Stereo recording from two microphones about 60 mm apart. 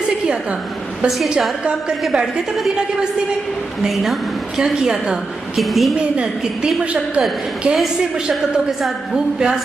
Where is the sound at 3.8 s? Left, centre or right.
Centre.